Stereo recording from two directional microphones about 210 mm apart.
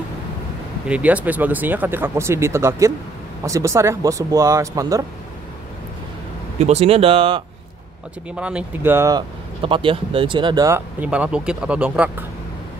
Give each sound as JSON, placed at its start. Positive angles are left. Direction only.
{"t": 0.8, "sound": "speech", "side_deg": -5}
{"t": 6.6, "sound": "speech", "side_deg": -30}
{"t": 8.4, "sound": "speech", "side_deg": -5}
{"t": 9.6, "sound": "speech", "side_deg": -25}